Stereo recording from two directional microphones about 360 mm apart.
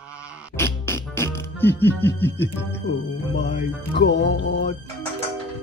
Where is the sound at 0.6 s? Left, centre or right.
Centre.